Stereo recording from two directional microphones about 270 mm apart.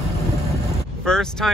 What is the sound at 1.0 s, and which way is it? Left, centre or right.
Speech, centre.